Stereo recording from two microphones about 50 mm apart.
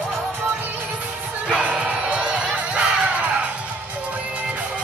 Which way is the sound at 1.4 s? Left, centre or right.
Right.